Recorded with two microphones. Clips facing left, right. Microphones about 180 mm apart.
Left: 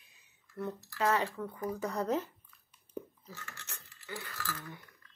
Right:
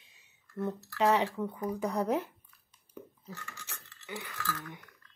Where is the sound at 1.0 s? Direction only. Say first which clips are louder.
Right 4 dB; 15° right (ahead or behind).